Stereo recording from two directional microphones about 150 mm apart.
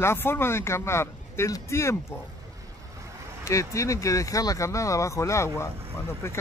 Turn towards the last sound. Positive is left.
turn(degrees=15)  # may be behind; listen again after turning